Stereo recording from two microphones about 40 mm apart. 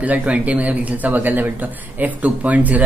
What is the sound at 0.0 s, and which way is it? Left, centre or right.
A man's voice, right.